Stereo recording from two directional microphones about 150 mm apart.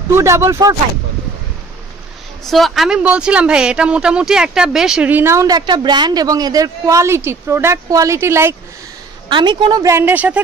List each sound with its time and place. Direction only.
0.1 s a woman's voice: 20° right (ahead or behind)
2.4 s speech: centre (ahead or behind); by 8.5 s 15° right (ahead or behind)
9.3 s a woman's voice: 30° right (ahead or behind); by 10.4 s 10° right (ahead or behind)